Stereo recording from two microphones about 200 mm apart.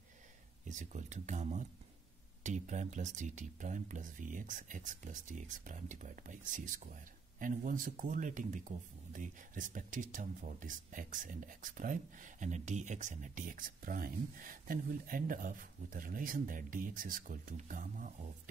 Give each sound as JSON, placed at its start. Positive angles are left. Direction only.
{"t": 0.7, "sound": "speech", "side_deg": -35}